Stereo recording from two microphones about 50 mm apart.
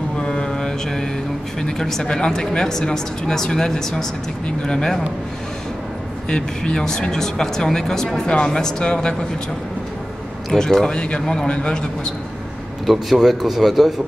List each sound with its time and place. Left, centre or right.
0.2 s mantra: centre
1.6 s speech: centre
6.2 s speech: centre
10.5 s a man's voice: centre
12.8 s a man's voice: centre